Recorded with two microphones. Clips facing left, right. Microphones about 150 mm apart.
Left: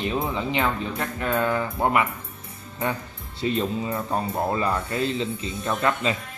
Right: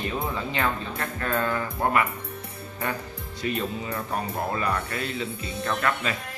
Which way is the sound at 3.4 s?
25° left (ahead or behind).